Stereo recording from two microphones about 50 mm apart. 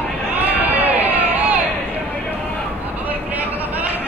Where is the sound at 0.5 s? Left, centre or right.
Right.